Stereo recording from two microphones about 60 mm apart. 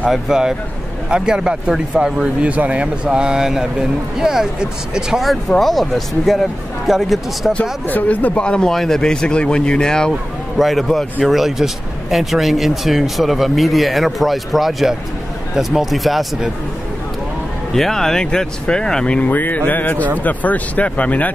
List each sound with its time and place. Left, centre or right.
0.1 s speech: centre
2.4 s speech: right
5.6 s speech: centre
7.8 s speech: left; by 10.1 s centre
10.6 s speech: centre
17.7 s speech: centre; by 21.3 s left